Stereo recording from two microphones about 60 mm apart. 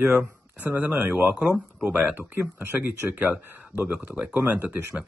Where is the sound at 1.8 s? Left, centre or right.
Right.